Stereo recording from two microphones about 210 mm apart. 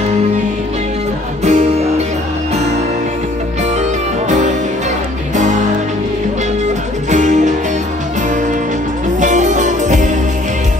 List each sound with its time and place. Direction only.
1.4 s music: 30° right (ahead or behind)
5.3 s music: 35° right (ahead or behind)
7.1 s music: 35° right (ahead or behind)
9.2 s music: 35° right (ahead or behind)